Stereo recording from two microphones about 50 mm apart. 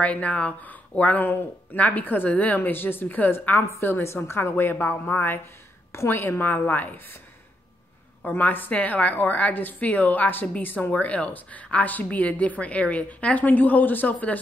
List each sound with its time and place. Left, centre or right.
0.0 s a woman's voice: left
3.8 s a woman's voice: left
5.9 s a woman's voice: left
8.4 s a woman's voice: left
10.9 s a woman's voice: left